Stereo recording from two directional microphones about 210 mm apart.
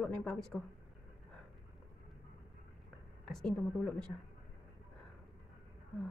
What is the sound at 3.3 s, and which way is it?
Speech, 5° left (ahead or behind).